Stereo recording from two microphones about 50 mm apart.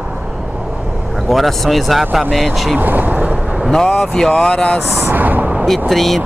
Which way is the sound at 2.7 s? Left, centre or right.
Right.